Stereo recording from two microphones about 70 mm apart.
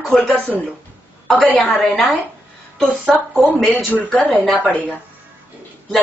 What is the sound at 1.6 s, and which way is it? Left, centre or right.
Speech, centre.